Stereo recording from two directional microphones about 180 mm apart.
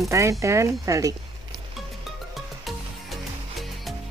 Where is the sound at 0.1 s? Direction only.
15° right (ahead or behind).